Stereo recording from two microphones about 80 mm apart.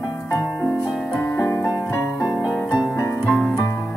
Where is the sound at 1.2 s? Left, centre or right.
Left.